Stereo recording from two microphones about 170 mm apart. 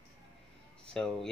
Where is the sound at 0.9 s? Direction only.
5° left (ahead or behind).